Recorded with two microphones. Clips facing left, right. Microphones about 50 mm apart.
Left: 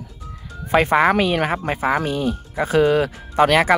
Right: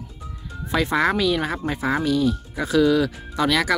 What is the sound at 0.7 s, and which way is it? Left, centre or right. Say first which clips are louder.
Speech: left 5 dB; left.